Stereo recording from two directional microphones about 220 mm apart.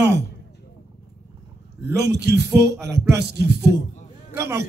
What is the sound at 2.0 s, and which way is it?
Speech, 50° right (ahead or behind).